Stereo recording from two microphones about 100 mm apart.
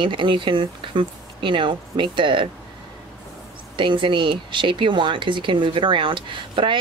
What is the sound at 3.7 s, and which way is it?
A woman's voice, 55° right (ahead or behind).